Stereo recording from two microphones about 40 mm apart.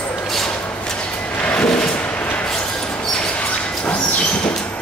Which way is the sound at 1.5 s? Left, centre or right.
Left.